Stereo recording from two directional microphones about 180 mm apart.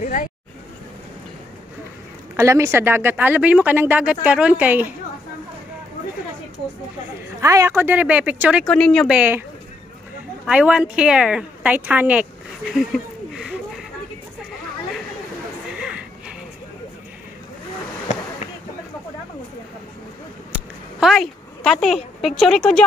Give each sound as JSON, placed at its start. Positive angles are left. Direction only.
{"t": 0.0, "sound": "speech", "side_deg": 45}
{"t": 2.3, "sound": "speech", "side_deg": -15}
{"t": 7.3, "sound": "speech", "side_deg": -15}
{"t": 8.6, "sound": "speech", "side_deg": 5}
{"t": 10.4, "sound": "speech", "side_deg": -5}
{"t": 15.7, "sound": "a sound", "side_deg": -5}
{"t": 20.5, "sound": "a sound", "side_deg": 0}